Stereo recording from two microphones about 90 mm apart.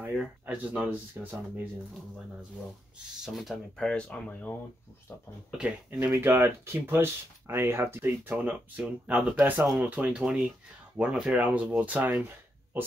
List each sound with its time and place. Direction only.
0.2 s speech: 10° right (ahead or behind)
3.3 s speech: centre (ahead or behind); by 4.6 s 15° left (ahead or behind)
5.6 s speech: 20° right (ahead or behind)